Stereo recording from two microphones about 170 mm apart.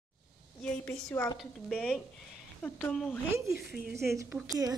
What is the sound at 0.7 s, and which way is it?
A woman's voice, 10° left (ahead or behind).